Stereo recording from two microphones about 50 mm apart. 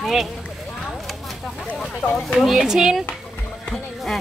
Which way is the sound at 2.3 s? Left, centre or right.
Centre.